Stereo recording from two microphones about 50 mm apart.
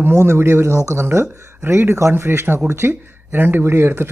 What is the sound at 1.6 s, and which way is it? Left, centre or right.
Speech, right.